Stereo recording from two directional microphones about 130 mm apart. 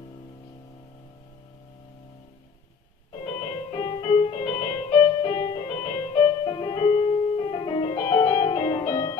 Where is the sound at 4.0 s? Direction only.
45° left (ahead or behind).